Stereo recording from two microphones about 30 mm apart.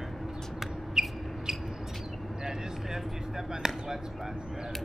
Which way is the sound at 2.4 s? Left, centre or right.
Centre.